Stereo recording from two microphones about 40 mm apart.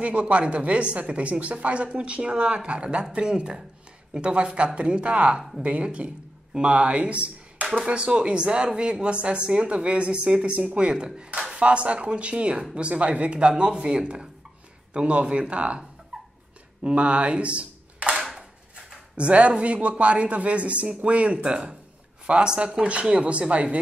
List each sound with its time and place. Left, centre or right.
0.0 s speech: right
16.1 s dog: centre
16.8 s speech: right
18.1 s a sound: centre
19.1 s speech: right